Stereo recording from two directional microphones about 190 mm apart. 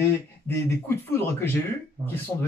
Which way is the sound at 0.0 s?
15° left (ahead or behind).